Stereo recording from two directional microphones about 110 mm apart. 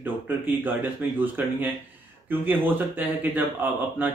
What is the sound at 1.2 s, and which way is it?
Speech, 15° right (ahead or behind).